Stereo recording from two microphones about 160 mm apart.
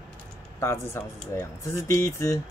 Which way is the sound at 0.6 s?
15° left (ahead or behind).